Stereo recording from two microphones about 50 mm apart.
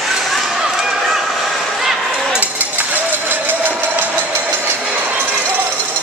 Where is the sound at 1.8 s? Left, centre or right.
Centre.